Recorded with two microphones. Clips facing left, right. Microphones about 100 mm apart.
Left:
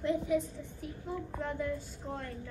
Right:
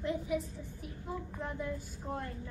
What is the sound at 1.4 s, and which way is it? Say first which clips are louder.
Female singing: left 4 dB; 15° right (ahead or behind).